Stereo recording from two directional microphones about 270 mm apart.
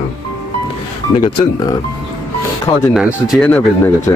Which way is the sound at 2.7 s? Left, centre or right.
Centre.